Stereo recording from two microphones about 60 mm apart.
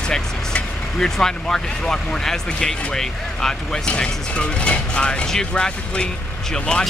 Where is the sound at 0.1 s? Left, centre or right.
Centre.